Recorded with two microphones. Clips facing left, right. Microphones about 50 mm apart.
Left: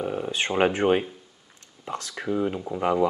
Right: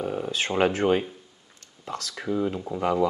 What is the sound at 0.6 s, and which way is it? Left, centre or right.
Speech, centre.